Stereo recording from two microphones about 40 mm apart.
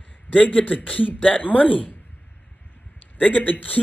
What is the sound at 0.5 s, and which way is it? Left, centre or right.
Speech, left.